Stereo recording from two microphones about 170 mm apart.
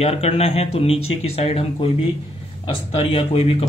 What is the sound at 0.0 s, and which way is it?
Speech, 35° left (ahead or behind).